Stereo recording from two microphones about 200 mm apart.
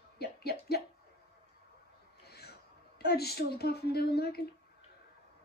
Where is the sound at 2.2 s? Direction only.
55° left (ahead or behind).